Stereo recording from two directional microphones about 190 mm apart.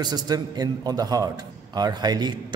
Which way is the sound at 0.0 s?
20° right (ahead or behind).